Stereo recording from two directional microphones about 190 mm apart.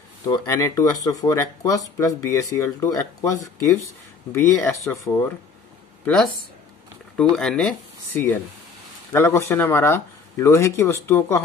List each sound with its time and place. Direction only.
0.2 s speech: 15° left (ahead or behind)
7.3 s speech: 5° left (ahead or behind)